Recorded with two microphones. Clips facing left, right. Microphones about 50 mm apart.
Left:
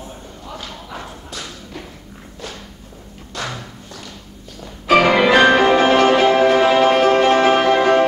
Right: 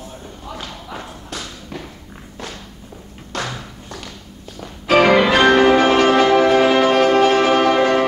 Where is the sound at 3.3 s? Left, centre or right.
Right.